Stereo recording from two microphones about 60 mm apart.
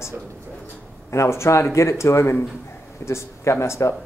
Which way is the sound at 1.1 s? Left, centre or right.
Left.